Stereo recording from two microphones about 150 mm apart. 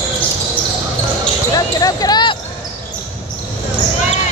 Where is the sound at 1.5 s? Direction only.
25° left (ahead or behind).